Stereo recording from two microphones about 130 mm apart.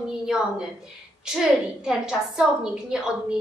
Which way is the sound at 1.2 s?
5° right (ahead or behind).